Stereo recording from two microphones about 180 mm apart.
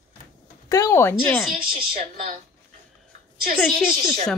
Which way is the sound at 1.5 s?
50° right (ahead or behind).